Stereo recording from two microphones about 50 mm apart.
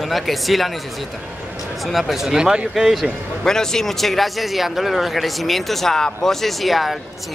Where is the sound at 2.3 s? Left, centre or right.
Centre.